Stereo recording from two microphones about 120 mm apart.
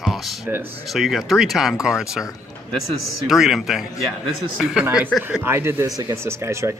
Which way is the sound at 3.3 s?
Centre (ahead or behind).